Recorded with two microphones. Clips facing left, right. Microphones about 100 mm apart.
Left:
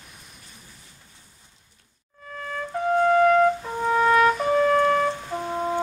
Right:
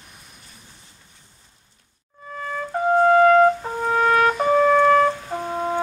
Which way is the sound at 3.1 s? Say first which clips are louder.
Right 4 dB; 90° right.